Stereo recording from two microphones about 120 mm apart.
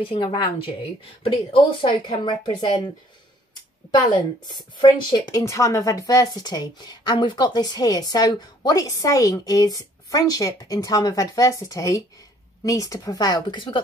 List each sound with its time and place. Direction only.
0.0 s a woman's voice: 45° left (ahead or behind)
3.9 s a woman's voice: 35° left (ahead or behind)
5.4 s a woman's voice: 25° left (ahead or behind); by 13.8 s 40° left (ahead or behind)